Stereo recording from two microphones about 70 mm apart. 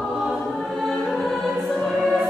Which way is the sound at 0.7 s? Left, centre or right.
Centre.